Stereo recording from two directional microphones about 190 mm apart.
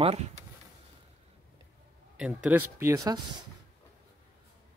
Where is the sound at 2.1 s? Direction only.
5° right (ahead or behind).